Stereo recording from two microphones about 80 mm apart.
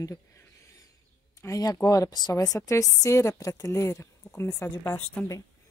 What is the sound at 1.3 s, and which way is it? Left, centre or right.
A woman's voice, left.